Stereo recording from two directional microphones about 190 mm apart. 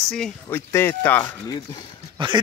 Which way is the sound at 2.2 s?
25° right (ahead or behind).